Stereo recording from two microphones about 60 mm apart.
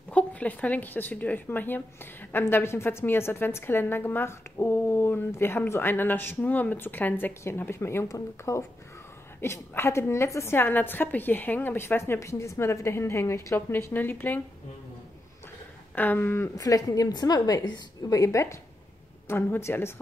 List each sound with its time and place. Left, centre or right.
0.1 s speech: left
2.3 s a woman's voice: left
7.7 s a woman's voice: left
8.1 s speech: left
9.4 s a woman's voice: left
12.2 s a woman's voice: left
15.9 s speech: left
16.2 s a woman's voice: left
16.5 s a woman's voice: left
19.2 s a woman's voice: left